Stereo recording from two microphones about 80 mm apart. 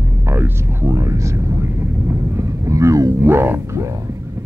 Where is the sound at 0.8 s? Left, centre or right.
Right.